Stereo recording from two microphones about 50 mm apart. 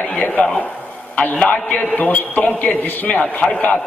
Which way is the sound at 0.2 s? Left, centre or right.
Left.